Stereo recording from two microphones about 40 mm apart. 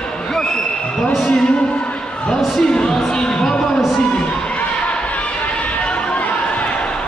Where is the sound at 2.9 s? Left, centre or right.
Centre.